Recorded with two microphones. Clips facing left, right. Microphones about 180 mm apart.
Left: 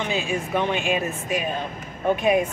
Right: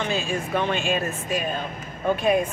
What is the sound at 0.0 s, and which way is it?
Speech, 15° left (ahead or behind).